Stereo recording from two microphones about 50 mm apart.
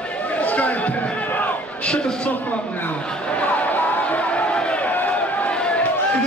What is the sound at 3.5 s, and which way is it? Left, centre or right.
Music, left.